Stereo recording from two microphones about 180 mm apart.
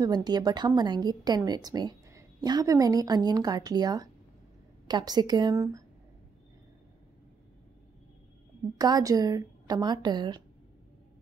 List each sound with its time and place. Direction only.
0.0 s a woman's voice: 25° right (ahead or behind)
8.7 s a woman's voice: 20° right (ahead or behind)